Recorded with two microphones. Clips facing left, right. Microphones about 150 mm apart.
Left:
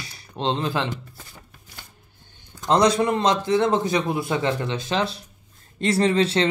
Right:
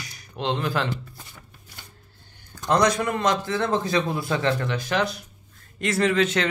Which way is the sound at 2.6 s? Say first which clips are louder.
Left 3 dB; 25° left (ahead or behind).